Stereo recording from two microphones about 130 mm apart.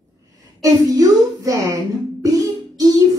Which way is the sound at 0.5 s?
25° right (ahead or behind).